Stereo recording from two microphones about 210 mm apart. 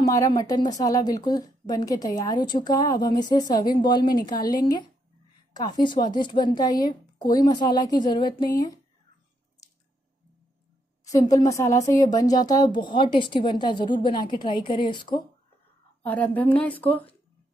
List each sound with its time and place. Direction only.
0.0 s a woman's voice: 20° left (ahead or behind)
9.6 s squish: 15° left (ahead or behind)
11.1 s a woman's voice: 15° left (ahead or behind)
16.0 s a woman's voice: 5° left (ahead or behind)